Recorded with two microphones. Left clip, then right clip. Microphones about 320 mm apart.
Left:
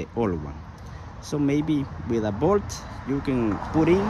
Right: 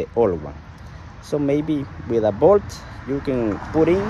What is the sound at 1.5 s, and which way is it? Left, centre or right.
Speech, left.